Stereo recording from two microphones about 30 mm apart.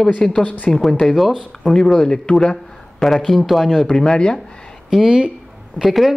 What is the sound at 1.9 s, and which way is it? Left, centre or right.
Speech, left.